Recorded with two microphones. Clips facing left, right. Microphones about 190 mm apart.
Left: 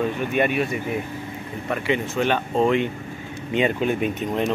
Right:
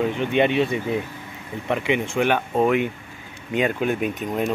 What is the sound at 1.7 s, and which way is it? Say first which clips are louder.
Speech: right 1 dB; 15° right (ahead or behind).